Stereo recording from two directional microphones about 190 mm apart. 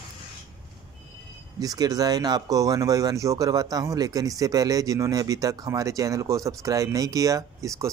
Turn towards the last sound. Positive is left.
turn(degrees=-15)  # may be behind; listen again after turning